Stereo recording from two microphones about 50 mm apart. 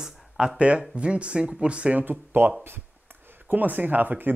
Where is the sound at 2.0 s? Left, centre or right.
Right.